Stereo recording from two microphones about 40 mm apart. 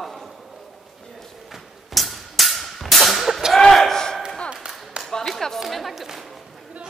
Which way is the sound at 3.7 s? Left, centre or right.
Centre.